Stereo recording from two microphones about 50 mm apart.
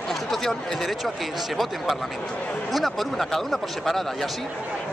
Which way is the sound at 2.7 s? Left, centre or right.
Centre.